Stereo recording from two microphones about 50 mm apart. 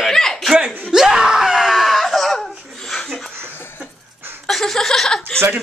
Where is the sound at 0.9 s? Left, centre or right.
Centre.